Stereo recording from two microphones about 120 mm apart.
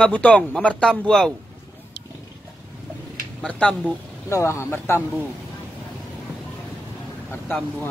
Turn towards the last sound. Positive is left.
turn(degrees=15)  # may be behind; listen again after turning